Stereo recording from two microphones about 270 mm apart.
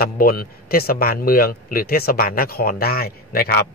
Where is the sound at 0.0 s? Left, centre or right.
Left.